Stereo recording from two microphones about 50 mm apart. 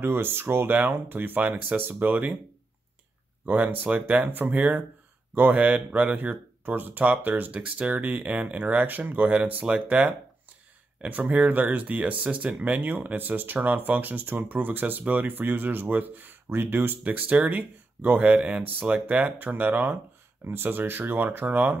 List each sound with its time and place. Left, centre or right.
0.0 s speech: right
3.4 s speech: right
17.0 s speech: right
18.3 s speech: right
20.4 s speech: right